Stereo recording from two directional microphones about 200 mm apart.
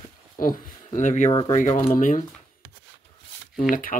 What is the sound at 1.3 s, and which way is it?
Speech, 20° left (ahead or behind).